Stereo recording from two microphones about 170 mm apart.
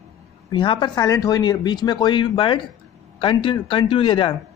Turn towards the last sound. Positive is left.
turn(degrees=30)  # may be behind; listen again after turning